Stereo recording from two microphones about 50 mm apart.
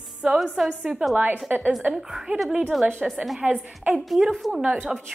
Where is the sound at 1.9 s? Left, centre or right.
Centre.